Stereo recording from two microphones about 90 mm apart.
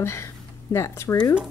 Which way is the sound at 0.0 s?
30° left (ahead or behind).